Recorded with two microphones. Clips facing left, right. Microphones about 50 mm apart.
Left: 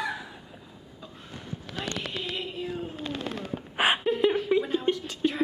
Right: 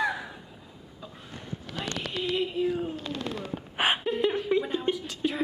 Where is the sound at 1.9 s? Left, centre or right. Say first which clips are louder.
Even; left.